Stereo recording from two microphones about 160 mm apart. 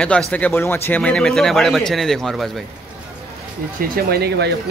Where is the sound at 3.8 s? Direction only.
70° right (ahead or behind).